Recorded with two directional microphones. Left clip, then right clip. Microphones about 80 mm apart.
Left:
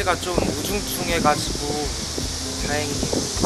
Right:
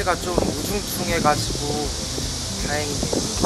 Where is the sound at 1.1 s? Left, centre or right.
Centre.